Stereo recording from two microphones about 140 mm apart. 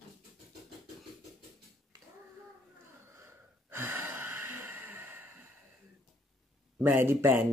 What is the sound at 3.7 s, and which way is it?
Sigh, 20° right (ahead or behind).